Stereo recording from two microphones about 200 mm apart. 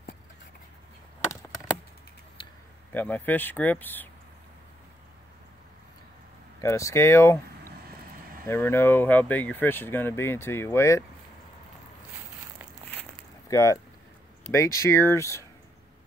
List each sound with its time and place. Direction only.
2.4 s a sound: 25° left (ahead or behind)
2.9 s speech: 10° left (ahead or behind)
6.6 s speech: 15° left (ahead or behind)
8.5 s speech: 10° left (ahead or behind)
13.5 s speech: 15° left (ahead or behind)